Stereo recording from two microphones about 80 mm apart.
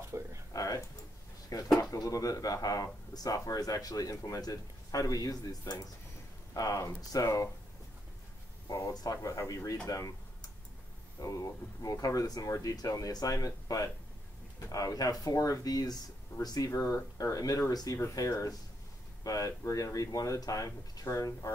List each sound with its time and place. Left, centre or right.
0.1 s a sound: right
0.5 s speech: left
8.6 s speech: left
11.1 s speech: left